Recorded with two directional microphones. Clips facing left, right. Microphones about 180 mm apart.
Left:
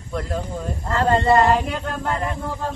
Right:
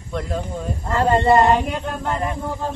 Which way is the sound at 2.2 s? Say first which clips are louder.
Right 2 dB; 15° right (ahead or behind).